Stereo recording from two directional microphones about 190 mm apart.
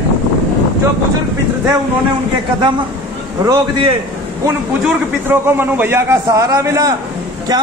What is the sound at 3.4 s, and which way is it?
A man's voice, 20° right (ahead or behind).